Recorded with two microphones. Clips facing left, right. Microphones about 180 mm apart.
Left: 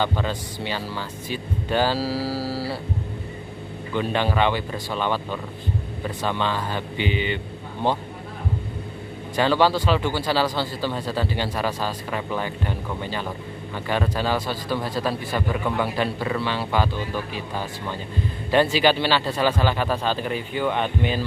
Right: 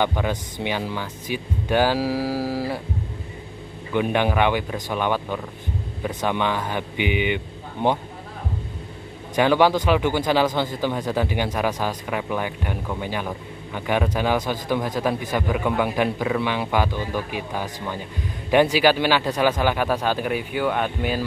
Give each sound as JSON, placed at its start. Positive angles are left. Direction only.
{"t": 0.0, "sound": "speech", "side_deg": -15}
{"t": 3.9, "sound": "speech", "side_deg": -15}
{"t": 9.3, "sound": "speech", "side_deg": -15}